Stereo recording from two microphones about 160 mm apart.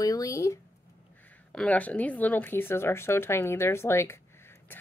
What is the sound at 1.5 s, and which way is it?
A woman's voice, 5° left (ahead or behind).